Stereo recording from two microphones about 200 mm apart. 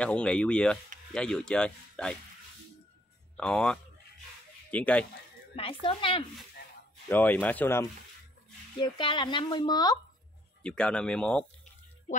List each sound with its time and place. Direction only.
0.0 s speech: 5° left (ahead or behind)
3.3 s speech: 5° left (ahead or behind)
5.6 s speech: 25° left (ahead or behind)
7.1 s speech: 10° left (ahead or behind)
8.8 s speech: 25° left (ahead or behind)
10.6 s speech: 5° left (ahead or behind)